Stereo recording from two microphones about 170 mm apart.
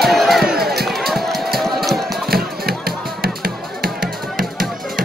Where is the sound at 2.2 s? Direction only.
60° right (ahead or behind).